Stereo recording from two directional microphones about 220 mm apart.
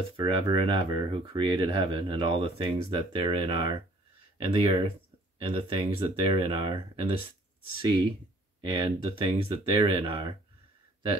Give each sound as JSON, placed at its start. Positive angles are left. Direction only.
{"t": 0.1, "sound": "speech", "side_deg": -25}
{"t": 8.5, "sound": "speech", "side_deg": -25}